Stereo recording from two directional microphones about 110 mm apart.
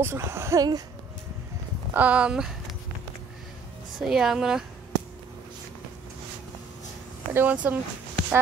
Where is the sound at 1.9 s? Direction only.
10° right (ahead or behind).